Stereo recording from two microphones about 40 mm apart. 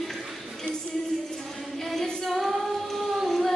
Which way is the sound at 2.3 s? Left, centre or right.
Centre.